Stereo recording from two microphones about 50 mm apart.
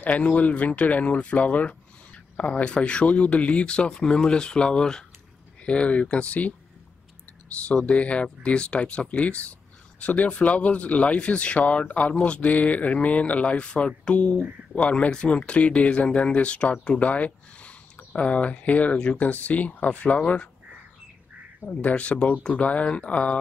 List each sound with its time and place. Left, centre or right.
0.0 s speech: left
21.6 s speech: left